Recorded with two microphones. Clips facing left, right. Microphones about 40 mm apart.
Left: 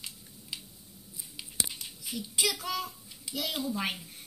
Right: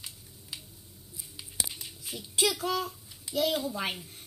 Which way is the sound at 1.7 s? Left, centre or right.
Right.